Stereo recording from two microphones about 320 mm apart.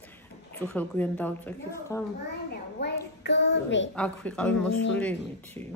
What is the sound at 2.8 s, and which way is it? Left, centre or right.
A child's voice, left.